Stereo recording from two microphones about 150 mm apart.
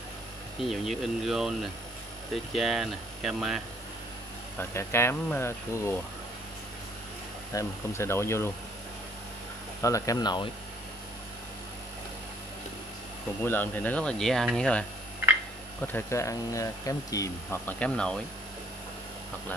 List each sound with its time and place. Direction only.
0.6 s speech: centre (ahead or behind)
2.5 s speech: centre (ahead or behind)
4.6 s speech: 15° left (ahead or behind)
7.5 s speech: 15° left (ahead or behind)
9.8 s speech: 20° left (ahead or behind)
13.4 s speech: 15° left (ahead or behind)
15.9 s speech: 20° left (ahead or behind)